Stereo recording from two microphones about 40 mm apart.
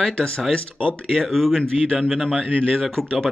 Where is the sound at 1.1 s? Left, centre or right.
Centre.